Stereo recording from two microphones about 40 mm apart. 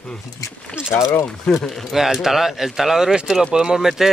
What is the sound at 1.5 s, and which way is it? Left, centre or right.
Speech, left.